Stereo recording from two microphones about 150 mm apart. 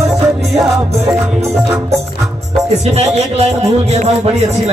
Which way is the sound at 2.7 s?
45° right (ahead or behind).